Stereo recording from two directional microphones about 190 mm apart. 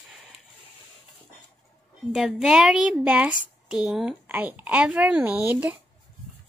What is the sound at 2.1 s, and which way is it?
A woman's voice, centre (ahead or behind).